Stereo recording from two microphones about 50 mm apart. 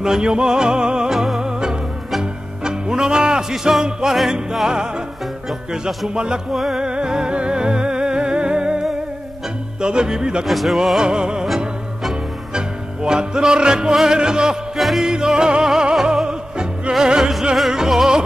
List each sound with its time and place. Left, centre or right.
0.0 s music: centre
5.5 s music: centre
6.1 s music: centre
6.5 s music: centre
6.8 s music: centre
10.4 s music: centre
11.0 s music: centre
11.4 s music: centre
12.5 s music: centre
14.8 s music: centre
15.0 s music: centre